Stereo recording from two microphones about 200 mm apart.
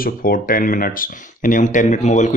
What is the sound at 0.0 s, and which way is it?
Speech, 45° left (ahead or behind).